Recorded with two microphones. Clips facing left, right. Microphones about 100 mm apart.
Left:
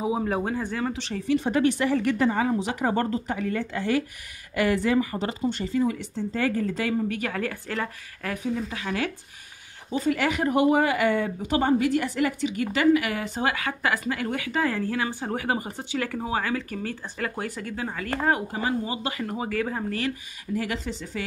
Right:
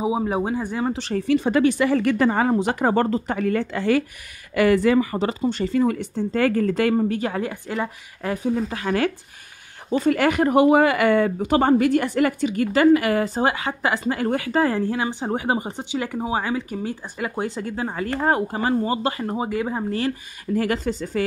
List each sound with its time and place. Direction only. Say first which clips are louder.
0.0 s speech: right 3 dB; 15° right (ahead or behind)
0.9 s speech: right 7 dB; 45° right (ahead or behind)
1.2 s speech: right 3 dB; 90° right
2.3 s speech: right 5 dB; 55° right (ahead or behind)
7.1 s a woman's voice: right 4 dB; 30° right (ahead or behind)
8.5 s speech: right 6 dB; 45° right (ahead or behind); by 20.0 s 20° right (ahead or behind)
20.5 s speech: right 7 dB; 50° right (ahead or behind)